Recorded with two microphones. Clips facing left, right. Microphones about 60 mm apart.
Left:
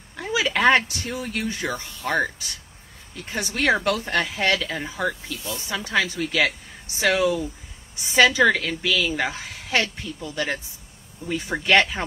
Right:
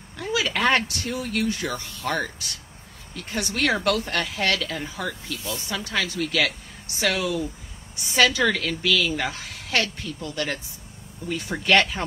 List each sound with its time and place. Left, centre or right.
0.2 s a woman's voice: centre
3.3 s a woman's voice: centre